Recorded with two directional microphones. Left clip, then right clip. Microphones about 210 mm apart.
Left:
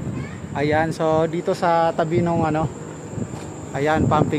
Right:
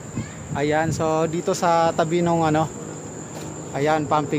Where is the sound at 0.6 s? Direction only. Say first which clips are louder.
Left 1 dB; 5° left (ahead or behind).